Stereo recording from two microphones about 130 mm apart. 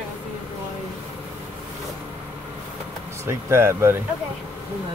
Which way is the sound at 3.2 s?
20° right (ahead or behind).